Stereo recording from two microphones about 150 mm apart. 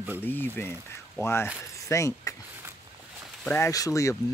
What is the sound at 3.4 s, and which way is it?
Speech, 10° left (ahead or behind).